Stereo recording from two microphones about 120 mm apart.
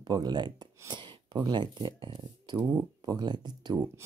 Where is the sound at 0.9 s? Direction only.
40° right (ahead or behind).